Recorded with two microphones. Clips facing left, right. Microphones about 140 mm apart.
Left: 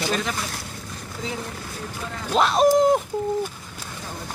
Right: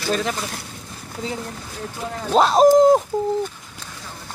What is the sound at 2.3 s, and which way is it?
Speech, 40° right (ahead or behind).